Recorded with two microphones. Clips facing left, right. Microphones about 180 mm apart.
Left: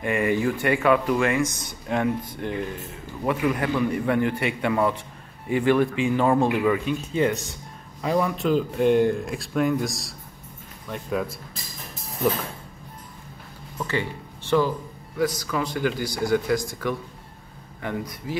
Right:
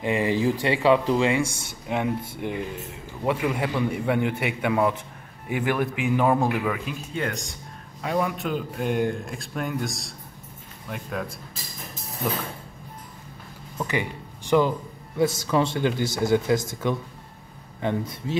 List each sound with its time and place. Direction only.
0.0 s a man's voice: 25° right (ahead or behind); by 11.3 s centre (ahead or behind)
13.7 s speech: 15° right (ahead or behind)
15.1 s speech: 25° right (ahead or behind)